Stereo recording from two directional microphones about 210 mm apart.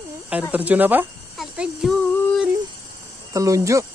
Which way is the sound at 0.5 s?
5° right (ahead or behind).